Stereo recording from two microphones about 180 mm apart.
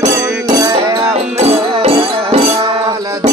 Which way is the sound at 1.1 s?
35° right (ahead or behind).